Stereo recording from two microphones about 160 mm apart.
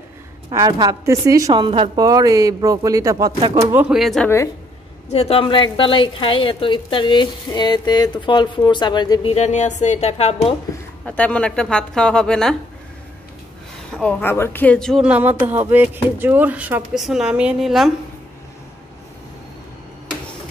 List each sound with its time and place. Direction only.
0.5 s speech: 25° right (ahead or behind)
2.0 s speech: 25° right (ahead or behind)
3.7 s a woman's voice: centre (ahead or behind)
5.1 s a woman's voice: 40° left (ahead or behind)
9.3 s a woman's voice: 45° left (ahead or behind)
11.1 s a woman's voice: 10° left (ahead or behind)
13.9 s speech: 10° left (ahead or behind)
15.0 s speech: 10° right (ahead or behind)